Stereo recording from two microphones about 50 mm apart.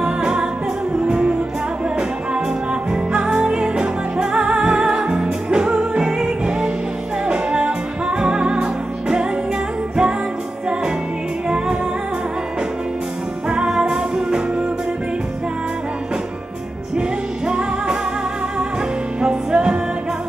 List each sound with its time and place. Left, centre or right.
0.0 s music: centre
11.4 s music: centre
13.5 s music: centre
17.5 s music: centre
19.2 s music: centre